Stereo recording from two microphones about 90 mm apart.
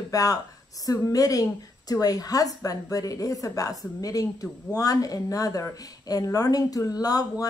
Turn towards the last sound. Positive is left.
turn(degrees=40)  # may be behind; listen again after turning